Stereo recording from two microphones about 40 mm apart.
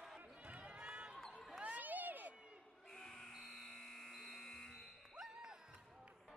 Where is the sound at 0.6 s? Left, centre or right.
Right.